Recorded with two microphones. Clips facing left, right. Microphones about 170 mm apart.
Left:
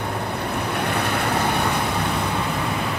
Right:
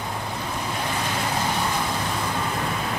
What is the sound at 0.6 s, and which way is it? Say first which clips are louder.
Vehicle: left 4 dB; 65° left (ahead or behind).